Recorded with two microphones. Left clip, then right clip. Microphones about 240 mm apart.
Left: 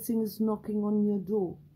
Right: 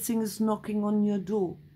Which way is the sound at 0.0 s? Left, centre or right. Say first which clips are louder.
Right 1 dB; centre.